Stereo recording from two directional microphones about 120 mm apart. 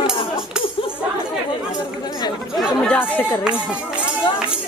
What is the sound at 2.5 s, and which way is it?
Chatter, 10° left (ahead or behind).